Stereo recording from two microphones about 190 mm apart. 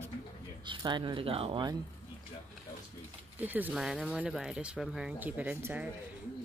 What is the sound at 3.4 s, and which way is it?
Speech, 10° right (ahead or behind).